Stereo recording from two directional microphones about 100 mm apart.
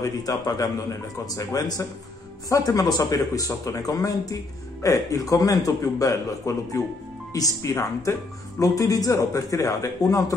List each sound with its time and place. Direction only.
0.0 s speech: 35° left (ahead or behind)